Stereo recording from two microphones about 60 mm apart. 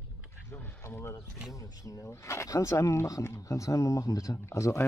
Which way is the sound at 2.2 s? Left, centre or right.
Left.